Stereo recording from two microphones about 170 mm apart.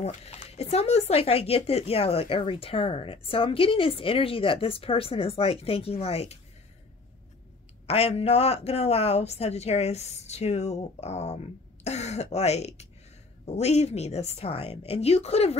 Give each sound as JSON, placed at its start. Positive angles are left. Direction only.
{"t": 0.0, "sound": "speech", "side_deg": 40}
{"t": 7.8, "sound": "speech", "side_deg": 35}